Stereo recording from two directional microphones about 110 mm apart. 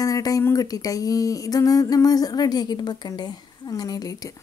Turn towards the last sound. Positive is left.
turn(degrees=35)  # may be behind; listen again after turning